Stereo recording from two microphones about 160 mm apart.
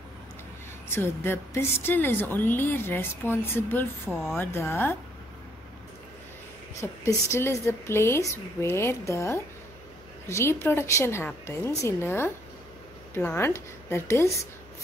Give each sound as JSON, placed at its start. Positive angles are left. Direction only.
{"t": 0.8, "sound": "speech", "side_deg": 15}
{"t": 4.1, "sound": "speech", "side_deg": 0}
{"t": 4.4, "sound": "speech", "side_deg": 15}
{"t": 6.8, "sound": "speech", "side_deg": 20}